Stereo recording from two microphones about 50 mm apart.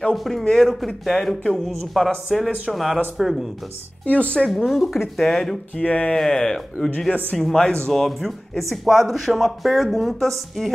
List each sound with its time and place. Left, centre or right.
0.1 s speech: centre
4.0 s speech: left
4.5 s speech: centre
5.8 s speech: left
6.1 s speech: centre